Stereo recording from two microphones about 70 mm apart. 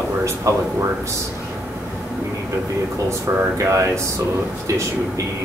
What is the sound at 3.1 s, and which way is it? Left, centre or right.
Speech, right.